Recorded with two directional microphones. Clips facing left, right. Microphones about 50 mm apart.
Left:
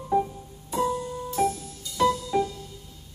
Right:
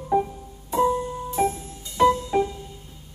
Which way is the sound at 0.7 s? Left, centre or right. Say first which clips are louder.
Right 5 dB; right.